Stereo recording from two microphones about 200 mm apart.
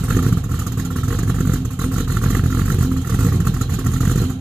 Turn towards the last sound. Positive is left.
turn(degrees=-5)  # may be behind; listen again after turning